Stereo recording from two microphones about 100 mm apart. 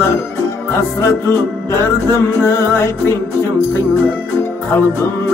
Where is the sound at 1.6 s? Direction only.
25° left (ahead or behind).